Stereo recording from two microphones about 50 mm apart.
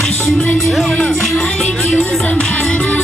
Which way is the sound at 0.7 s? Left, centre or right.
Centre.